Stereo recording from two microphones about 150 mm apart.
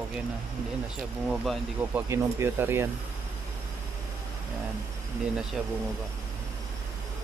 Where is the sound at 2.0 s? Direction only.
15° right (ahead or behind).